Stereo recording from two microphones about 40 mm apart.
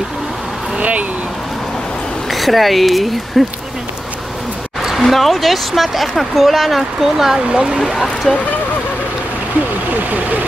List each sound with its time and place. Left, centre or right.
0.7 s a sound: right
2.2 s speech: centre
5.0 s speech: centre
7.3 s speech: right
7.8 s speech: centre